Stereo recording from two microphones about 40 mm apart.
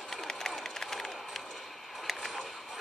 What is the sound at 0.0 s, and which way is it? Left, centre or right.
Run, centre.